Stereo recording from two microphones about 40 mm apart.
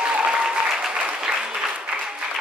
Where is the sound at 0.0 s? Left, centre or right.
Right.